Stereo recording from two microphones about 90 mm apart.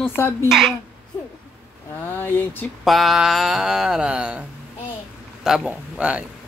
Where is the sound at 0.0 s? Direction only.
25° left (ahead or behind).